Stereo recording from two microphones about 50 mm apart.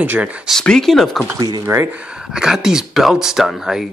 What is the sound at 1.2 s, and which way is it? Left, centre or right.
Speech, right.